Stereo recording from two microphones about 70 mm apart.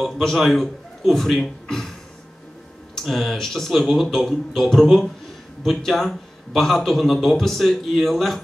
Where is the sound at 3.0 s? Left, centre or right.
Centre.